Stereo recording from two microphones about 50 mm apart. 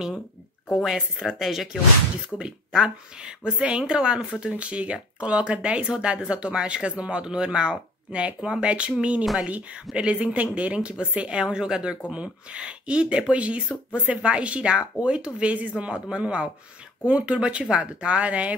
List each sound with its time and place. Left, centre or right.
0.8 s speech: centre
2.2 s speech: centre